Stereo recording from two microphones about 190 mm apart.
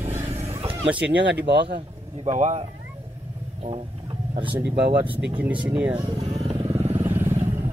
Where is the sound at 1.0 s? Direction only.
65° right (ahead or behind).